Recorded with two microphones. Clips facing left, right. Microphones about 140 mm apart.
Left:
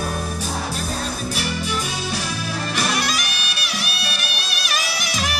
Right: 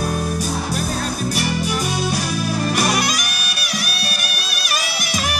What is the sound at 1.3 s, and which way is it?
Music, 45° right (ahead or behind).